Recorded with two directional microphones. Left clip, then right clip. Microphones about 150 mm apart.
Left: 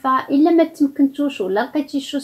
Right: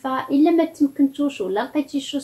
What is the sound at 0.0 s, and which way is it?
A woman's voice, 35° left (ahead or behind).